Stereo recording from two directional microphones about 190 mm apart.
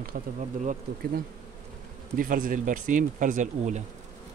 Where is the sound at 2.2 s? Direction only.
45° right (ahead or behind).